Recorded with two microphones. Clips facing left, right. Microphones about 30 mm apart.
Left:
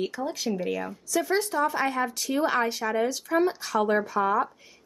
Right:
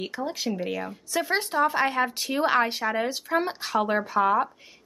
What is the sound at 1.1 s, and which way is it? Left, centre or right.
Speech, right.